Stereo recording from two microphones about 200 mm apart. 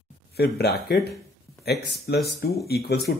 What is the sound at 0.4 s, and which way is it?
Speech, 50° left (ahead or behind).